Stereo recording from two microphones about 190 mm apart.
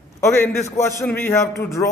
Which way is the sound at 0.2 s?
15° left (ahead or behind).